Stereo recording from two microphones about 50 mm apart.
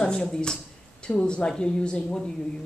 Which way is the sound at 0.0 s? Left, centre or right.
Centre.